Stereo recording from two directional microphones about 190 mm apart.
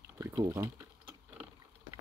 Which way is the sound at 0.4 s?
20° right (ahead or behind).